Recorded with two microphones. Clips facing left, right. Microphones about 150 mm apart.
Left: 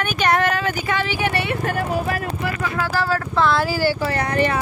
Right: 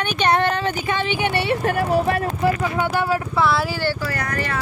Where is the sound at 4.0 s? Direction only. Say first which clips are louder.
Left 6 dB; 25° left (ahead or behind).